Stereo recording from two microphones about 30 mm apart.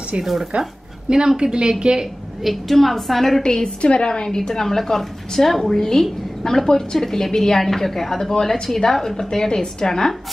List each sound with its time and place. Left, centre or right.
0.2 s speech: centre
1.1 s a woman's voice: right
2.4 s a woman's voice: centre
3.4 s a woman's voice: left
3.8 s a woman's voice: left
4.4 s a woman's voice: centre